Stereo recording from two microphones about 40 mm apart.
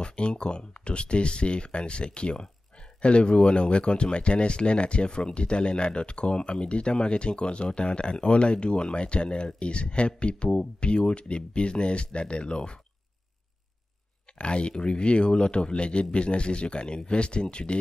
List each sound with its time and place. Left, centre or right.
0.0 s speech: left
14.4 s speech: left